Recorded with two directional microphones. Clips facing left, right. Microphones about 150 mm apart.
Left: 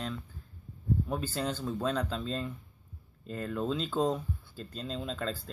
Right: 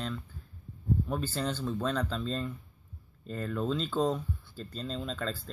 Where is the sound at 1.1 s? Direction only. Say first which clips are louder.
Even; 10° left (ahead or behind).